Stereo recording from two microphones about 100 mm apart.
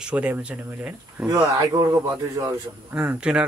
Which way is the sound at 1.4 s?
30° right (ahead or behind).